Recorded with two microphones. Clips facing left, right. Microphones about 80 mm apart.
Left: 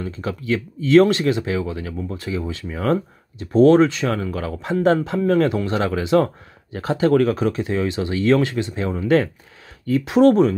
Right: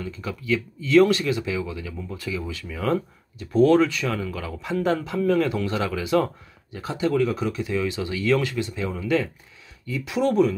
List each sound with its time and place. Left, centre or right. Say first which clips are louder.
0.0 s speech: left 5 dB; left